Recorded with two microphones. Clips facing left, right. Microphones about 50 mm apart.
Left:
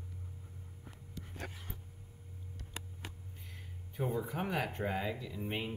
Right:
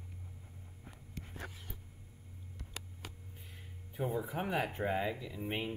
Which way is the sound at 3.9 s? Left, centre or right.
Centre.